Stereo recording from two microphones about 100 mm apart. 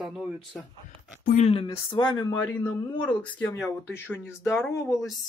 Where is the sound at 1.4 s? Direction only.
70° left (ahead or behind); by 2.4 s 50° left (ahead or behind).